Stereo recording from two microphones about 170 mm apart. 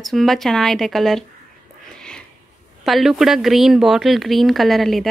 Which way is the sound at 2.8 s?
Centre (ahead or behind).